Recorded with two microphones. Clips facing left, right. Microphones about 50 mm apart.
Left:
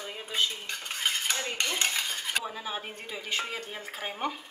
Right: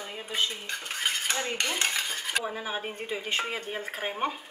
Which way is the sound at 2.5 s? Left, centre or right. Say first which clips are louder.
Right 3 dB; right.